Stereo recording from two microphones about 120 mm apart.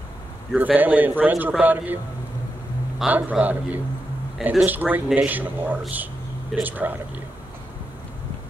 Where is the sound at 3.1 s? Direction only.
15° right (ahead or behind).